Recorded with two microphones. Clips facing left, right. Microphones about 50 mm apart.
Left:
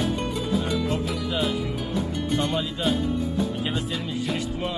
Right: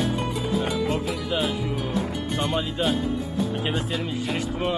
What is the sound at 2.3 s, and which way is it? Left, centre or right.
Speech, centre.